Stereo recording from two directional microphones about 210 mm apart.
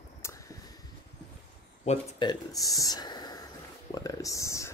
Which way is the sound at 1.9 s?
20° left (ahead or behind).